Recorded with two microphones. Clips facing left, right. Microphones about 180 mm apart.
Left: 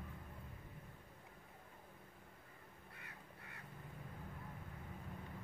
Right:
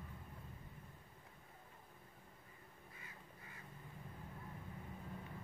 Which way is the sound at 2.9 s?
65° left (ahead or behind).